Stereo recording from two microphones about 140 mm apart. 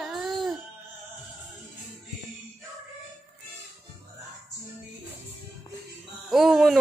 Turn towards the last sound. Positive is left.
turn(degrees=0)  # may be behind; listen again after turning